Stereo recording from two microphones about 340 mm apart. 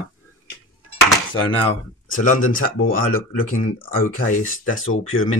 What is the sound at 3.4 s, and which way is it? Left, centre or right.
Speech, left.